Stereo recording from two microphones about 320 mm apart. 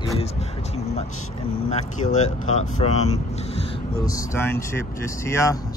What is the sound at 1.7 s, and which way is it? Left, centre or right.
Speech, left.